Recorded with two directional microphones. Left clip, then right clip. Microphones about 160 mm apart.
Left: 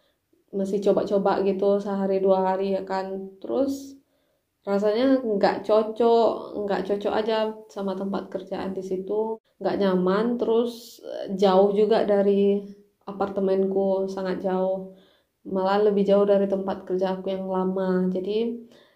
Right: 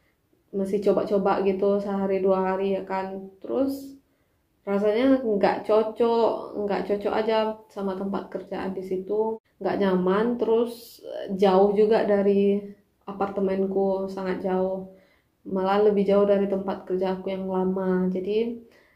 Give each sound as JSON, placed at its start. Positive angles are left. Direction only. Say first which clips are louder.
{"t": 0.5, "sound": "speech", "louder": "left 1 dB", "side_deg": 25}
{"t": 4.6, "sound": "speech", "louder": "even", "side_deg": 30}